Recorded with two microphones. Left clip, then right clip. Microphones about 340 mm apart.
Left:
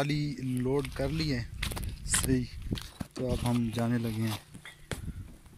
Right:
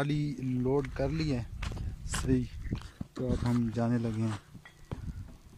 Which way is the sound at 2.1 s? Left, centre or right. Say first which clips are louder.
Left 1 dB; centre.